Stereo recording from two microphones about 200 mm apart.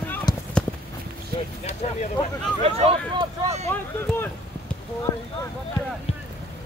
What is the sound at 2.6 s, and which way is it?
Speech, 30° right (ahead or behind).